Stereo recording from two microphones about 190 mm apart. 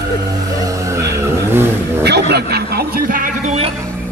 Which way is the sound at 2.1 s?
60° right (ahead or behind).